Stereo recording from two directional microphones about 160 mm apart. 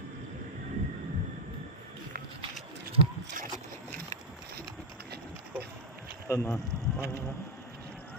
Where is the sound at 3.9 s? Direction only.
60° right (ahead or behind).